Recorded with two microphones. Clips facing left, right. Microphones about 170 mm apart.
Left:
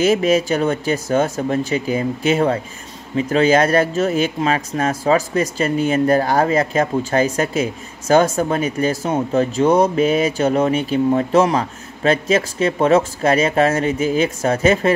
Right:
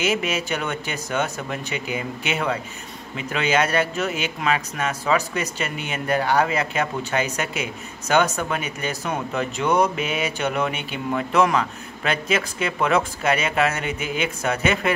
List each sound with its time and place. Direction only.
0.0 s speech: 35° left (ahead or behind)